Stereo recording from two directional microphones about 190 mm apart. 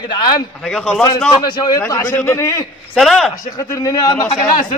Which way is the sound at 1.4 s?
20° left (ahead or behind).